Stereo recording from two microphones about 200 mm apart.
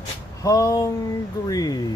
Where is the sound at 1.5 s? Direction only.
20° left (ahead or behind).